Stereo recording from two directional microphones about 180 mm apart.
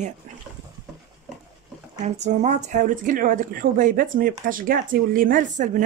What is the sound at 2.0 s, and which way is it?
Speech, 40° right (ahead or behind).